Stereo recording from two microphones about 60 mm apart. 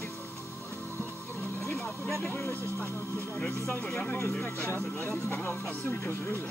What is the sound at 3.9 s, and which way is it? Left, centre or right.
Speech, left.